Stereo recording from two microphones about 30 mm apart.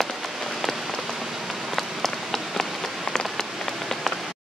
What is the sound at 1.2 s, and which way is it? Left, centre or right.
Rain on surface, centre.